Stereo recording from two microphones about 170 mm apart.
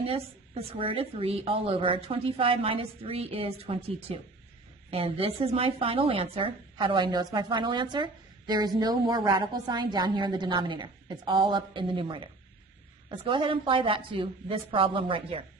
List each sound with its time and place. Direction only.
0.0 s a woman's voice: 35° right (ahead or behind)